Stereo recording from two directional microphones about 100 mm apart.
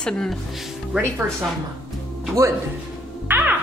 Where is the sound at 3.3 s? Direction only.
20° right (ahead or behind).